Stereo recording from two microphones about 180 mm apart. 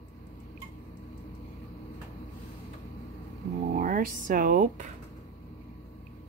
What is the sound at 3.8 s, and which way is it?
Speech, 50° right (ahead or behind).